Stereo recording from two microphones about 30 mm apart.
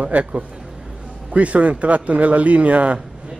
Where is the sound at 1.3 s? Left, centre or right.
Right.